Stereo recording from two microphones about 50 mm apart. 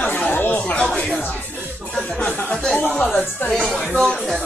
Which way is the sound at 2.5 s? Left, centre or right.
Centre.